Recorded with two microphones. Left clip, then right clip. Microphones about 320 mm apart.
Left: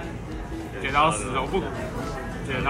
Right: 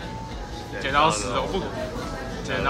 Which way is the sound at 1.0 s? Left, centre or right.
Centre.